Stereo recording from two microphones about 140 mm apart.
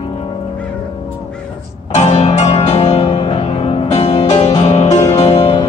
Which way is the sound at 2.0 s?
50° left (ahead or behind).